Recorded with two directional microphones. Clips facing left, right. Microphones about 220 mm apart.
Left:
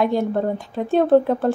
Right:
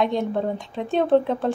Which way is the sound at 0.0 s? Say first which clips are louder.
Left 3 dB; 5° left (ahead or behind).